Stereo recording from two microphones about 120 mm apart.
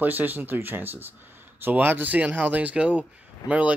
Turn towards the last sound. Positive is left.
turn(degrees=-10)  # may be behind; listen again after turning